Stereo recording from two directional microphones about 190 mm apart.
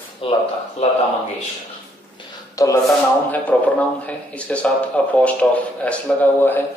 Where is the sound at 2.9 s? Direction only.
10° left (ahead or behind).